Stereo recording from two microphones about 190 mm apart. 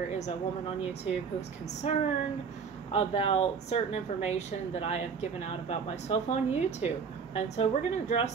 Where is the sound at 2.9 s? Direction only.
30° left (ahead or behind).